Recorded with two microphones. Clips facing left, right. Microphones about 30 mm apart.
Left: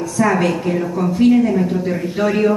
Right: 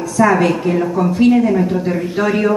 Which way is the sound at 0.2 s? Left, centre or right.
Centre.